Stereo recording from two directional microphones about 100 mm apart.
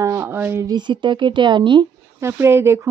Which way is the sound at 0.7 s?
50° right (ahead or behind).